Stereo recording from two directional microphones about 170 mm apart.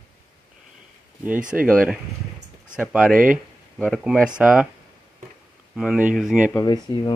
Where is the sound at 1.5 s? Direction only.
5° right (ahead or behind).